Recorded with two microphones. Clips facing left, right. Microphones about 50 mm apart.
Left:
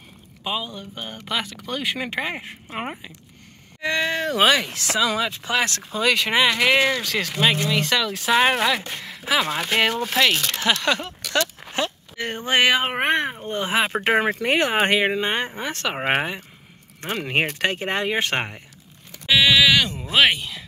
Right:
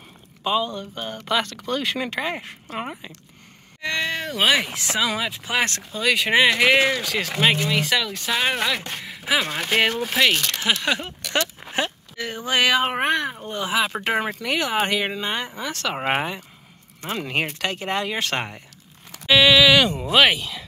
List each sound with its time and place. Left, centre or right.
0.4 s speech: centre
3.8 s speech: centre
4.6 s speech: centre
5.0 s speech: centre
5.9 s speech: centre
6.1 s speech: centre
8.1 s speech: centre
11.3 s a sound: centre
12.2 s speech: left
12.6 s speech: left
19.2 s speech: centre